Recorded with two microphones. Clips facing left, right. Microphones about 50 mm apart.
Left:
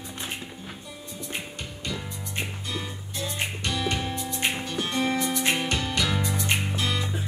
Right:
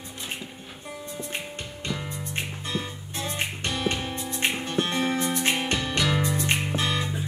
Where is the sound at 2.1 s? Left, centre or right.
Right.